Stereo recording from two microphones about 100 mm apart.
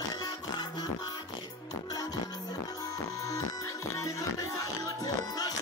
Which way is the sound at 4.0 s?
35° left (ahead or behind).